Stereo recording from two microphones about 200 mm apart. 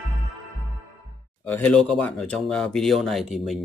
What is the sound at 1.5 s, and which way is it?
Speech, 5° left (ahead or behind).